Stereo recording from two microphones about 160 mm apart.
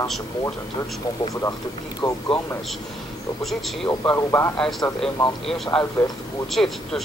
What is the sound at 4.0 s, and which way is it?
Speech, 15° left (ahead or behind).